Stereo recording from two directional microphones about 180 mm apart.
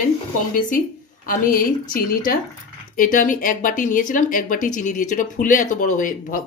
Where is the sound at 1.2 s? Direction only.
50° left (ahead or behind).